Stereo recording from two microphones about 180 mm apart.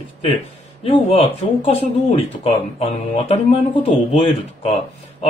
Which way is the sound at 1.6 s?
35° left (ahead or behind).